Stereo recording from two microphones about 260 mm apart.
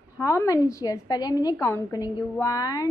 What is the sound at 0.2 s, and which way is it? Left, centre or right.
Speech, centre.